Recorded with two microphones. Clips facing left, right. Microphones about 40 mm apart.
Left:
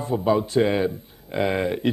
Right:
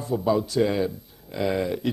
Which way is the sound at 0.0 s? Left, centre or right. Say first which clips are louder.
Left 2 dB; left.